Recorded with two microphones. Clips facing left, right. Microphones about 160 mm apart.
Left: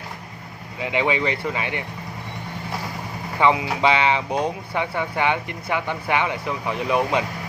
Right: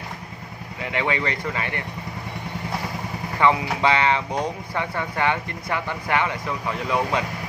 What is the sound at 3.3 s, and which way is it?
Speech, 15° left (ahead or behind).